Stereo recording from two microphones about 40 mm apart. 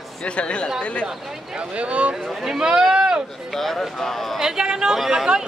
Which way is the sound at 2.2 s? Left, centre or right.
Centre.